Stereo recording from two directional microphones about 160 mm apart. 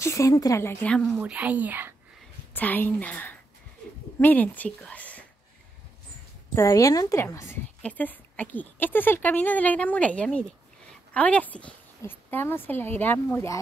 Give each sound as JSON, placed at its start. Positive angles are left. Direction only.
{"t": 0.0, "sound": "a woman's voice", "side_deg": 20}
{"t": 0.9, "sound": "a woman's voice", "side_deg": 0}
{"t": 2.5, "sound": "a woman's voice", "side_deg": 10}
{"t": 6.5, "sound": "a woman's voice", "side_deg": 20}